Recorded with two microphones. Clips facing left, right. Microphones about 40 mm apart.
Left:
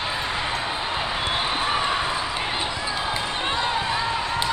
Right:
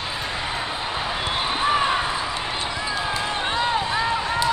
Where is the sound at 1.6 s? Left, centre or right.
Centre.